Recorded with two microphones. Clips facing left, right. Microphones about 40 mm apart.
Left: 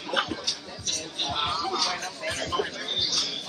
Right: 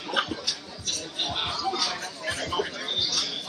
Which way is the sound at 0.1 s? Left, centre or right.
Centre.